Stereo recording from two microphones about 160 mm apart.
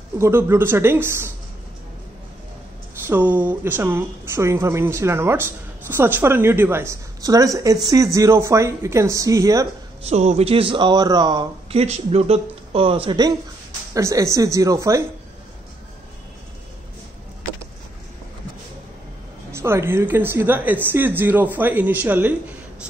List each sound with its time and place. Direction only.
0.2 s speech: 15° right (ahead or behind)
3.1 s a woman's voice: 10° right (ahead or behind)
10.0 s speech: 40° right (ahead or behind)
11.8 s speech: 40° right (ahead or behind)
13.9 s a woman's voice: 20° right (ahead or behind)
19.5 s speech: 15° right (ahead or behind)